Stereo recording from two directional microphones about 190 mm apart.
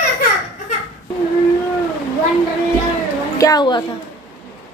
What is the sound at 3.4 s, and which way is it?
Speech, 20° left (ahead or behind).